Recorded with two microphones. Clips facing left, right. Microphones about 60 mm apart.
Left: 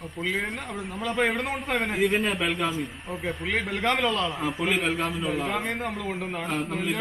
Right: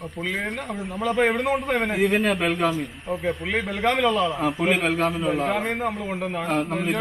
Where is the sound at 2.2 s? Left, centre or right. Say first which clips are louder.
Right 4 dB; right.